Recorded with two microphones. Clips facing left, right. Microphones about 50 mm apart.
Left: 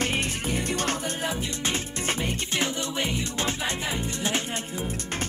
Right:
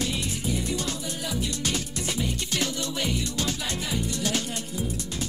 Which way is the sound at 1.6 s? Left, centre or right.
Left.